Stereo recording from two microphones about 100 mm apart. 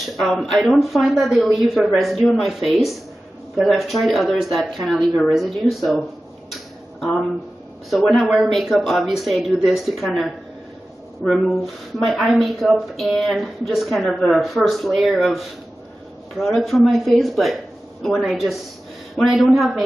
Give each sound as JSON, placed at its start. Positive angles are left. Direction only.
{"t": 0.2, "sound": "a woman's voice", "side_deg": 0}
{"t": 7.9, "sound": "a woman's voice", "side_deg": 0}